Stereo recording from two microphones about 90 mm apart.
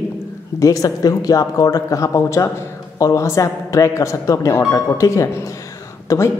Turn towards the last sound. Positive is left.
turn(degrees=40)  # may be behind; listen again after turning